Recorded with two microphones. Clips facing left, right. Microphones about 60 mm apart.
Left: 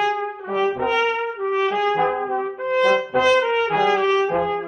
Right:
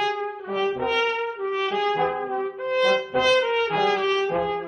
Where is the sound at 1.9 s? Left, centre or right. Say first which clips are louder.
Left 3 dB; centre.